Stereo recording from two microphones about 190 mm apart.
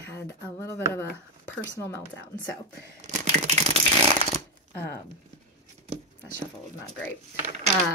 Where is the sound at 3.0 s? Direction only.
35° right (ahead or behind).